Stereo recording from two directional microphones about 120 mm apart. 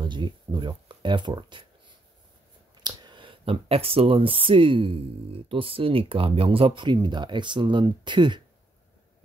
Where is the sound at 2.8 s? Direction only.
40° right (ahead or behind).